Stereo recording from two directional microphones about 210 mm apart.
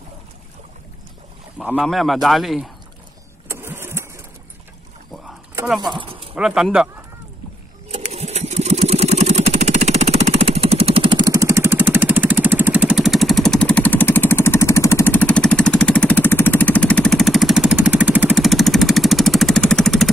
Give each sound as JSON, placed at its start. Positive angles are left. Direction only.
{"t": 1.8, "sound": "speech", "side_deg": 0}
{"t": 3.4, "sound": "vehicle", "side_deg": -10}
{"t": 5.9, "sound": "a sound", "side_deg": -25}
{"t": 6.3, "sound": "speech", "side_deg": -5}
{"t": 7.9, "sound": "vehicle", "side_deg": -30}